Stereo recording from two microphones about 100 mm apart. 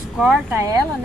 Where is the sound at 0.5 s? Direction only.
30° right (ahead or behind).